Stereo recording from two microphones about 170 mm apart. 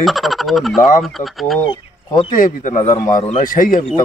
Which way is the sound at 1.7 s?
30° left (ahead or behind).